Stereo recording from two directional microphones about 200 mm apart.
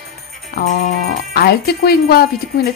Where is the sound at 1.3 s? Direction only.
50° left (ahead or behind).